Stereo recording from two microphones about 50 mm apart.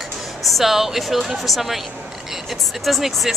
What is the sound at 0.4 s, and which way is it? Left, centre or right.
Speech, centre.